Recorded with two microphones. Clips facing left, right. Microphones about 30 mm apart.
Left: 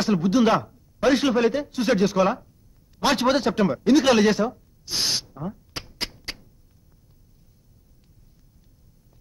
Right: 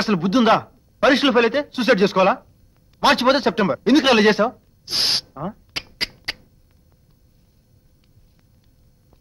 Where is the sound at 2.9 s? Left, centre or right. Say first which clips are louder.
Right 5 dB; right.